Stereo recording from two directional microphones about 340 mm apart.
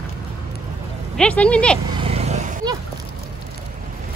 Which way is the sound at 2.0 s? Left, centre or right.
Centre.